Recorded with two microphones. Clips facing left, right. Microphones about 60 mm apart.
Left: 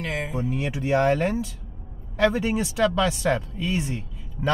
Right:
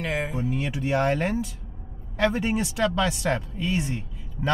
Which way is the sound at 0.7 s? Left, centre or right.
Centre.